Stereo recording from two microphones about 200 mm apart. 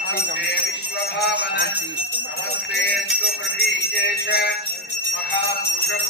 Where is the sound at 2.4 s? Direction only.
60° left (ahead or behind).